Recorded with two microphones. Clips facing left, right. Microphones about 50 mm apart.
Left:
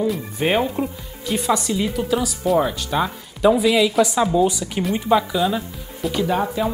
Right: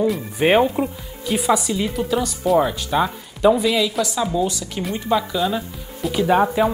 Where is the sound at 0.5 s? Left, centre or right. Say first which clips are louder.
Right 4 dB; centre.